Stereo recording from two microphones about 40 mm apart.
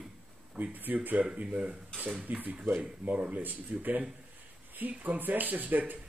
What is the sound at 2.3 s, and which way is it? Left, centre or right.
Speech, right.